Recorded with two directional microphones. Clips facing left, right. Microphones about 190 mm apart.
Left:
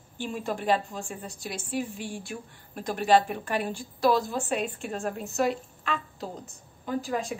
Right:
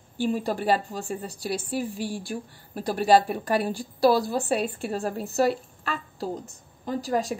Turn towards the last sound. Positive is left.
turn(degrees=-40)  # may be behind; listen again after turning